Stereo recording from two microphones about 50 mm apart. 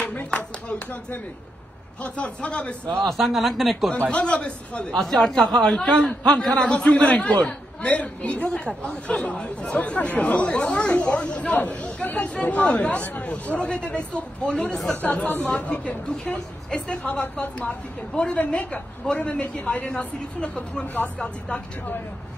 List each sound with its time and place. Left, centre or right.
0.3 s a sound: left
2.0 s a man's voice: left
3.0 s speech: centre
4.1 s a man's voice: left
4.9 s a man's voice: centre
15.2 s speech: left
15.5 s a man's voice: left